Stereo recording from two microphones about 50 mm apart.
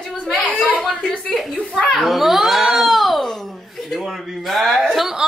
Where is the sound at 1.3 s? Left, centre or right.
Centre.